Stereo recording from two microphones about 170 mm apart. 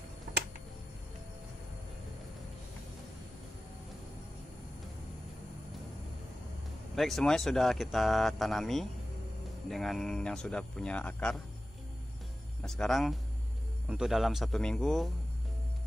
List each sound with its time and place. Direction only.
7.0 s speech: centre (ahead or behind)
12.6 s speech: 5° left (ahead or behind)